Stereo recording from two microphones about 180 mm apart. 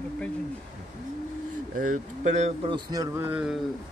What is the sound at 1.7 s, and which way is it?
Speech, 45° right (ahead or behind).